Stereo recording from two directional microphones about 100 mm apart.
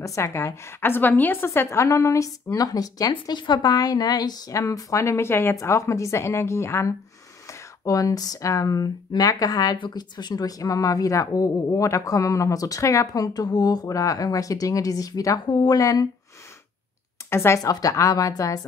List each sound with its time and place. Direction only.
0.0 s a woman's voice: 30° left (ahead or behind)
17.3 s speech: 25° left (ahead or behind)